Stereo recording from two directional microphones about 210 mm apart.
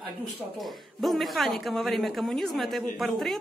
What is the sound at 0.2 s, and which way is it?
A woman's voice, centre (ahead or behind).